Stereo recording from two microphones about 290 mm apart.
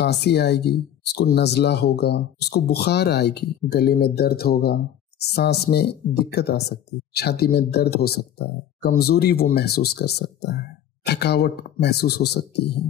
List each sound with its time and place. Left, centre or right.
0.0 s speech: left